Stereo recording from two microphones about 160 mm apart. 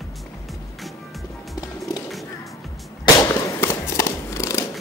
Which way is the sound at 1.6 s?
25° left (ahead or behind).